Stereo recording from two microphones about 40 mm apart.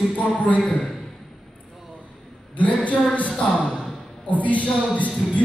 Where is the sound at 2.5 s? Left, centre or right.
Left.